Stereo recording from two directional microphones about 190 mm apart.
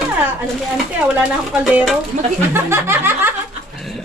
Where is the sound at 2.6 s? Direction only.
10° right (ahead or behind).